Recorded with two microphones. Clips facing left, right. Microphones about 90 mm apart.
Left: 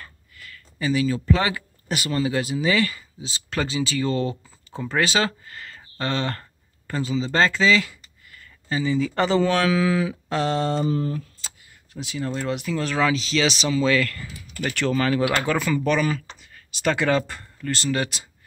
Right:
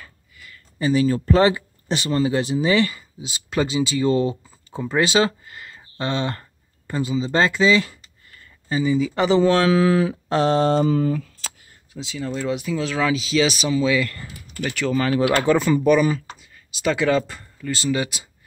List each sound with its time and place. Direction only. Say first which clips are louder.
0.0 s a sound: left 1 dB; 15° right (ahead or behind)
0.7 s music: right 4 dB; 35° right (ahead or behind)
1.5 s speech: right 4 dB; 25° right (ahead or behind)
9.8 s music: right 4 dB; 35° right (ahead or behind)
11.9 s speech: right 1 dB; 10° left (ahead or behind)
12.4 s speech: right 3 dB; 5° right (ahead or behind)
15.1 s speech: right 4 dB; 25° right (ahead or behind)
15.8 s speech: right 5 dB; 15° right (ahead or behind)
16.7 s speech: right 2 dB; centre (ahead or behind)